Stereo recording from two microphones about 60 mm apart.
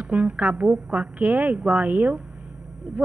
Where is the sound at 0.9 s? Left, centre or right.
Right.